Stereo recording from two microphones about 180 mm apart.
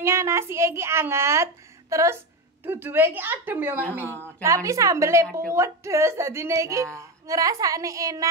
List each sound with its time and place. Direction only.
0.0 s a child's voice: 15° right (ahead or behind)